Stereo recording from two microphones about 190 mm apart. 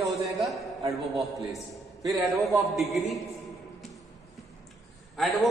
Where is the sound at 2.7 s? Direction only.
Centre (ahead or behind).